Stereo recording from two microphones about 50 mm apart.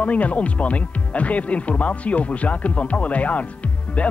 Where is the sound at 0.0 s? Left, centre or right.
Left.